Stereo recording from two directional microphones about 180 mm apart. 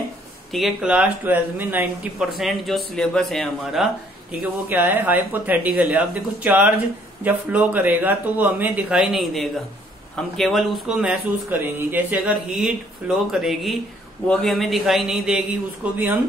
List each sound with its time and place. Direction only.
0.5 s speech: centre (ahead or behind)